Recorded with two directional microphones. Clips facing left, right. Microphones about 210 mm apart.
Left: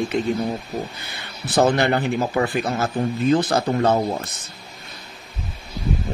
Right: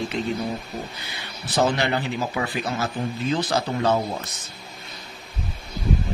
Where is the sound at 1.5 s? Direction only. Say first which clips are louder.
Left 4 dB; 50° left (ahead or behind).